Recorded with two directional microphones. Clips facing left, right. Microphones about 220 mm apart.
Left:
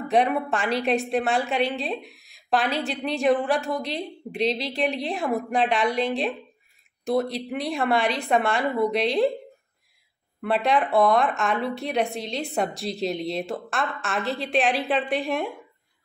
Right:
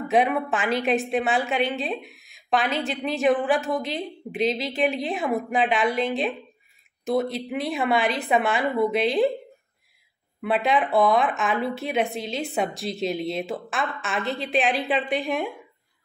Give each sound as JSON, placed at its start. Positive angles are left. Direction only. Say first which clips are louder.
{"t": 0.1, "sound": "a woman's voice", "louder": "even", "side_deg": 0}
{"t": 10.4, "sound": "a woman's voice", "louder": "even", "side_deg": 0}